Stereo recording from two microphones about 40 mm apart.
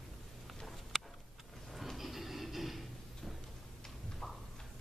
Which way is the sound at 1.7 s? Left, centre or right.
Centre.